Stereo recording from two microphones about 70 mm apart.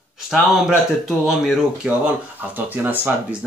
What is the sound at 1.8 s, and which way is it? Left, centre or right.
Speech, centre.